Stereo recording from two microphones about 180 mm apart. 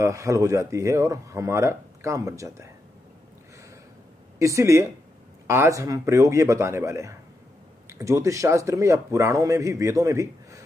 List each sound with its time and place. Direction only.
0.0 s speech: 15° right (ahead or behind)
4.4 s speech: 15° right (ahead or behind)